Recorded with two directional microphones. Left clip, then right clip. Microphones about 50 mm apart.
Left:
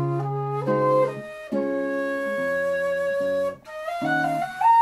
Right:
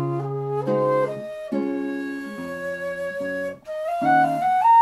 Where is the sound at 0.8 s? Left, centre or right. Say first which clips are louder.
Left 1 dB; centre.